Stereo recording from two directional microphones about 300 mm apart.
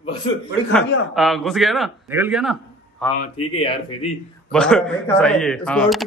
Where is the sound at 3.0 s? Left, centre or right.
Centre.